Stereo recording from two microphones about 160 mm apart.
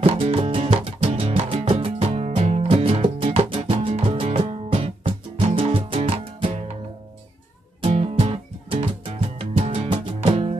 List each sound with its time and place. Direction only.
0.0 s music: 40° right (ahead or behind)
7.8 s music: 35° right (ahead or behind)